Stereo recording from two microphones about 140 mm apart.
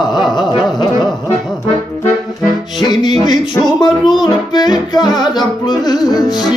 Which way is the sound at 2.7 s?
30° left (ahead or behind).